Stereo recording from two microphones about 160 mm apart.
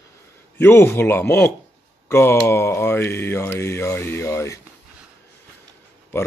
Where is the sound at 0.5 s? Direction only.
15° left (ahead or behind).